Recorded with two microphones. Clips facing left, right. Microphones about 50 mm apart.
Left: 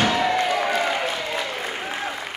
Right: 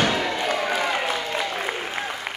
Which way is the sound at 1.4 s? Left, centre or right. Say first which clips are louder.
Right 1 dB; centre.